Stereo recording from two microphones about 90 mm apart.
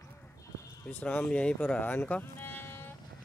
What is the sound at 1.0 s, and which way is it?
Speech, 10° left (ahead or behind).